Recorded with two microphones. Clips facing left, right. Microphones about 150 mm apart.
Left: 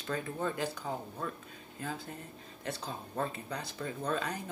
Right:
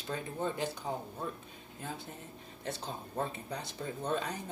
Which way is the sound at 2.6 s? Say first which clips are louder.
Even; 25° right (ahead or behind).